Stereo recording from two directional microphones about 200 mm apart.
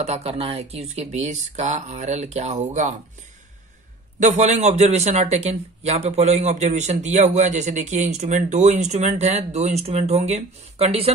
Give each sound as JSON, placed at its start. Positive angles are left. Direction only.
{"t": 0.0, "sound": "a man's voice", "side_deg": -30}
{"t": 4.2, "sound": "a man's voice", "side_deg": -35}